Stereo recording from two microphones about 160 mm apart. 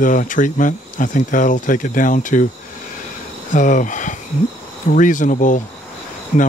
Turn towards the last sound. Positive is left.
turn(degrees=45)  # may be behind; listen again after turning